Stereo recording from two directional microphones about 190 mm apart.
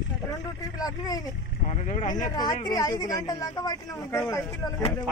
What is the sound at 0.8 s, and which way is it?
Speech, 20° left (ahead or behind).